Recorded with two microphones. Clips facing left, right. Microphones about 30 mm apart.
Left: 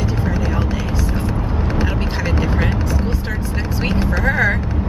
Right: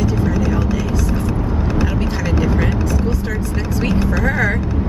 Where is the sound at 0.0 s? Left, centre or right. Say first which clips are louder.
Right 3 dB; left.